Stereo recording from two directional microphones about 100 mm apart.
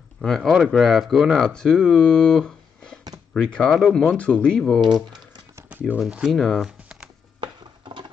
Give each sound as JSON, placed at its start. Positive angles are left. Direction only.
{"t": 0.2, "sound": "speech", "side_deg": 0}
{"t": 4.2, "sound": "speech", "side_deg": 15}
{"t": 5.7, "sound": "speech", "side_deg": -15}
{"t": 6.3, "sound": "speech", "side_deg": 5}
{"t": 7.3, "sound": "a sound", "side_deg": -55}